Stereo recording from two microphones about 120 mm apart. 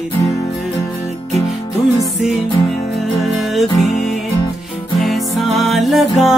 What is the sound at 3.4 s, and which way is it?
Music, centre (ahead or behind).